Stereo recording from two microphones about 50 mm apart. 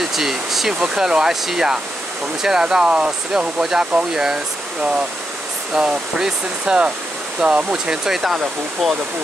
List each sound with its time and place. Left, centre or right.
0.1 s speech: centre
5.8 s speech: centre
8.8 s speech: centre